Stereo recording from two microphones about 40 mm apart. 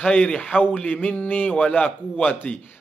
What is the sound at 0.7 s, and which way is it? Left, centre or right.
Speech, left.